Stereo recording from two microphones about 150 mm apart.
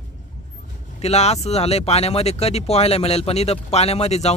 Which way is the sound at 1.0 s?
45° left (ahead or behind).